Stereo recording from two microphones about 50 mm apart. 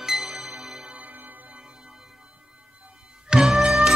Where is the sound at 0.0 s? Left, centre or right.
Centre.